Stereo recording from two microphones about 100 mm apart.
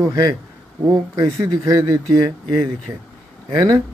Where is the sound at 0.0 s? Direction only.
35° right (ahead or behind).